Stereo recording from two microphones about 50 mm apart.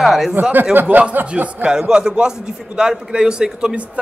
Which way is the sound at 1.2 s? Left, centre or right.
Right.